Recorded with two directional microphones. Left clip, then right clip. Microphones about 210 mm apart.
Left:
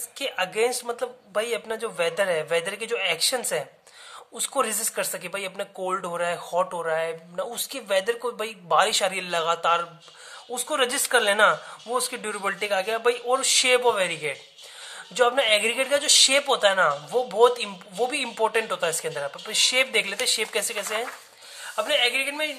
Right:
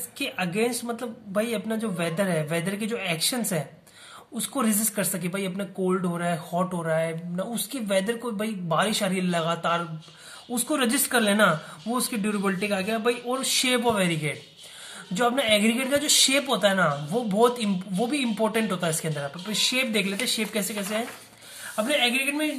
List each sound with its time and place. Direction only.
0.2 s speech: 30° left (ahead or behind)